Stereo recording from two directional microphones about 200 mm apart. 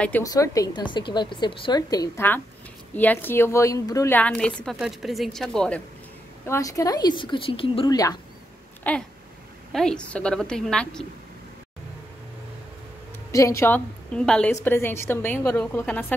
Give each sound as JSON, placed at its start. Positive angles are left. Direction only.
{"t": 0.2, "sound": "a woman's voice", "side_deg": 15}
{"t": 6.4, "sound": "a woman's voice", "side_deg": 15}
{"t": 8.8, "sound": "a woman's voice", "side_deg": 5}
{"t": 13.3, "sound": "a woman's voice", "side_deg": 15}